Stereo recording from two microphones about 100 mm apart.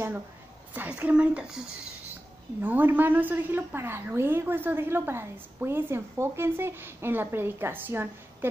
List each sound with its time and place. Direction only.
0.7 s a woman's voice: 15° right (ahead or behind)
2.6 s a woman's voice: 20° right (ahead or behind)